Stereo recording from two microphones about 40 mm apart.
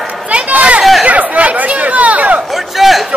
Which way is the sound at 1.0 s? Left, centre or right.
Right.